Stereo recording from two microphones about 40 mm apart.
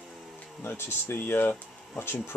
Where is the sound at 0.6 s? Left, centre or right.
Left.